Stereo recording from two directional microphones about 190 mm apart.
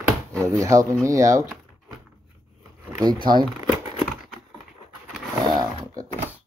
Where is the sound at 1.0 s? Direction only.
15° right (ahead or behind).